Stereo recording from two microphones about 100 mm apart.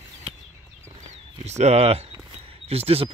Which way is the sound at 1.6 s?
90° right.